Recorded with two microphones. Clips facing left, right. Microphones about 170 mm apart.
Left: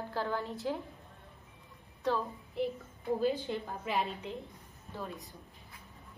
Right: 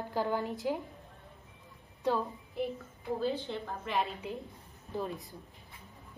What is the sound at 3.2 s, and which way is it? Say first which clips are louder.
Speech: left 1 dB; 15° left (ahead or behind).